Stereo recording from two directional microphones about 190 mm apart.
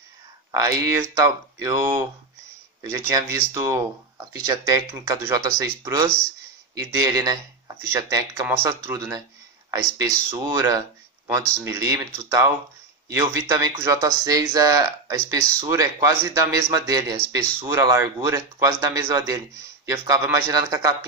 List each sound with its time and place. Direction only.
0.5 s speech: 15° right (ahead or behind)
3.1 s speech: 15° right (ahead or behind)